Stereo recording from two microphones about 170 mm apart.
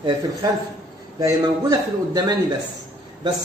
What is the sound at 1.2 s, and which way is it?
Speech, 20° right (ahead or behind).